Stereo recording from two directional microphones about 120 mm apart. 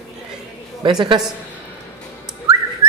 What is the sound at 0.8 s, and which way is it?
Speech, 40° right (ahead or behind).